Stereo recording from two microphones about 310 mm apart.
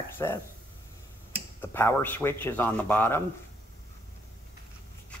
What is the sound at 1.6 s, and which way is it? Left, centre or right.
Speech, centre.